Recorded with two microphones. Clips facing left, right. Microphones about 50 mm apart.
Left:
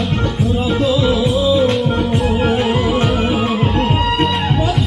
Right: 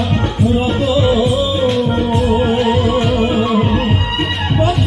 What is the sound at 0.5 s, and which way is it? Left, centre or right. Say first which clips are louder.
Music: even; right.